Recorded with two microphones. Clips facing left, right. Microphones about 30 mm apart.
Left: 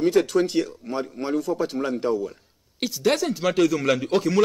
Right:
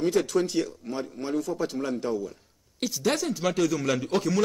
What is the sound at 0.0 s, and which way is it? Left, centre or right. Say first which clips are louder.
A man's voice: left 4 dB; centre.